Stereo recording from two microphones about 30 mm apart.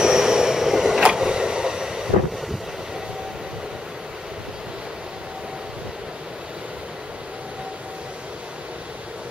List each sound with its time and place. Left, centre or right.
0.0 s vehicle: centre